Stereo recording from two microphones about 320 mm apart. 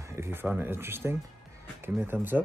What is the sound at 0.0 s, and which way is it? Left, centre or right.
Speech, centre.